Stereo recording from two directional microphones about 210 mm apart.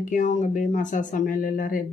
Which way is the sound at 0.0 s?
35° left (ahead or behind).